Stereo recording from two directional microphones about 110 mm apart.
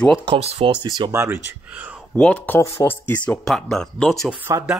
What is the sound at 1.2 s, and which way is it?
Speech, 15° right (ahead or behind).